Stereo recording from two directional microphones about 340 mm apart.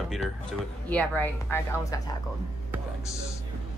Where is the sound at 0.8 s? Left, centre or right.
Centre.